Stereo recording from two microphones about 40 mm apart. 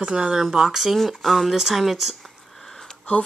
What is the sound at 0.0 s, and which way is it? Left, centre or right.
Speech, right.